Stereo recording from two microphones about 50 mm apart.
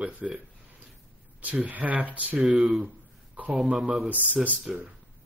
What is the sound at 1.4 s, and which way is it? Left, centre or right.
Speech, right.